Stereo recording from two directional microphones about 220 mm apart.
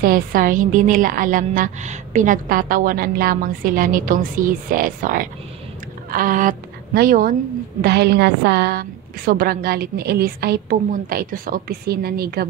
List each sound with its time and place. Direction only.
0.0 s a woman's voice: 40° right (ahead or behind)